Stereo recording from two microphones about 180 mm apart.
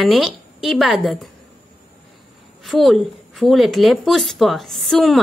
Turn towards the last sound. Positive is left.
turn(degrees=0)  # may be behind; listen again after turning